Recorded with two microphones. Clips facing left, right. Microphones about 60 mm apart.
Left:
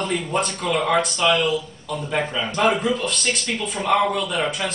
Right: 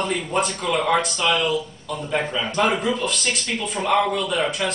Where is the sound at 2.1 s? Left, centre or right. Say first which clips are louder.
Even; centre.